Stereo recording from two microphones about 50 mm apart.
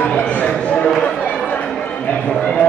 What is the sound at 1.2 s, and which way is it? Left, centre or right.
Chatter, left.